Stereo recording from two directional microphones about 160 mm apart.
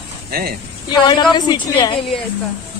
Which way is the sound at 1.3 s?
25° left (ahead or behind).